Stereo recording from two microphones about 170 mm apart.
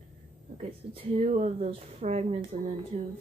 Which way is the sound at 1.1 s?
40° right (ahead or behind).